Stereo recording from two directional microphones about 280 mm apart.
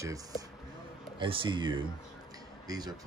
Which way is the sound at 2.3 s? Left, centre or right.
Centre.